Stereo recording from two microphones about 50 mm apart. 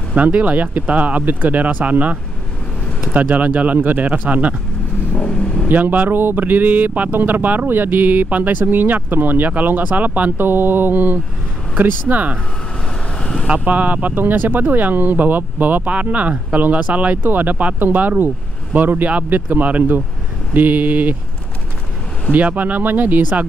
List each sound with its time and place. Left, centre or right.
0.1 s speech: right
5.1 s speech: centre
5.7 s speech: right
13.2 s vehicle: centre
13.7 s speech: right
22.3 s speech: right